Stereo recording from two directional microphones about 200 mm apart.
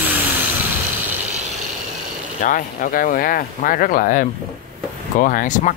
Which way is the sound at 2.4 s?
40° left (ahead or behind).